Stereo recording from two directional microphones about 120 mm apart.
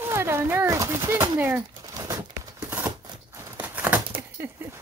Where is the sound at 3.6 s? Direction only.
10° right (ahead or behind).